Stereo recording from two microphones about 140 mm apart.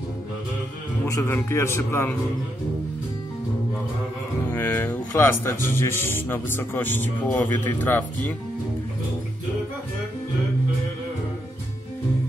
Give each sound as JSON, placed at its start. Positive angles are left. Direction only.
{"t": 1.0, "sound": "a man's voice", "side_deg": 20}
{"t": 4.5, "sound": "speech", "side_deg": 15}